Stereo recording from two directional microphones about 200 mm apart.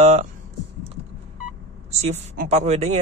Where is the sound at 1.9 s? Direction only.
35° right (ahead or behind).